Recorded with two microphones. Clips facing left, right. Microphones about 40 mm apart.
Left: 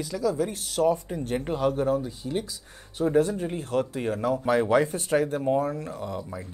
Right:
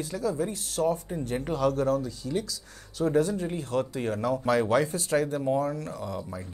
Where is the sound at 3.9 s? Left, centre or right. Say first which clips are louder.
Left 1 dB; left.